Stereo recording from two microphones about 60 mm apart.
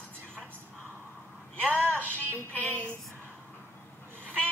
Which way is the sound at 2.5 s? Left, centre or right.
Left.